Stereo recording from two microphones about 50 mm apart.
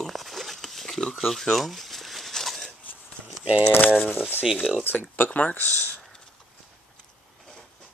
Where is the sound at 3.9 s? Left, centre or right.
Centre.